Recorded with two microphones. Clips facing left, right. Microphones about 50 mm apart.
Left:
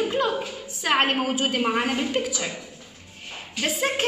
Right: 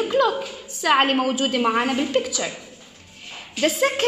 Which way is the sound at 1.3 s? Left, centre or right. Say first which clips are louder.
Right 2 dB; left.